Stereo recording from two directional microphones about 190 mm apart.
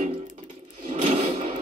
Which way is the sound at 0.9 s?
35° right (ahead or behind).